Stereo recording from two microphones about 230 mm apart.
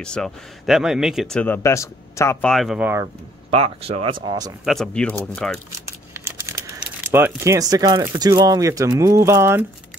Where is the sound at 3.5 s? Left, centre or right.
Right.